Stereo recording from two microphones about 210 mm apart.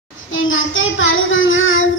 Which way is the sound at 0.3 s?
70° left (ahead or behind).